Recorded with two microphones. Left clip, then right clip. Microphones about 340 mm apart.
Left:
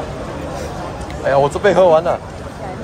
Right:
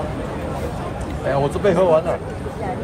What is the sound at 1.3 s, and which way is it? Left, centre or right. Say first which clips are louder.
Speech: left 5 dB; left.